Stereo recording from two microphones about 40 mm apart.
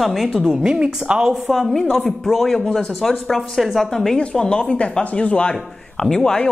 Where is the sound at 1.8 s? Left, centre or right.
Centre.